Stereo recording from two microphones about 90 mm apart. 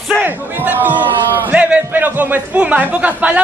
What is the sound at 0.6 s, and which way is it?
A man's voice, 20° right (ahead or behind).